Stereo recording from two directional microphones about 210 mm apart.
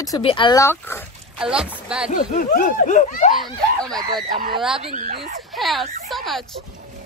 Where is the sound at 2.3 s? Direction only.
40° left (ahead or behind).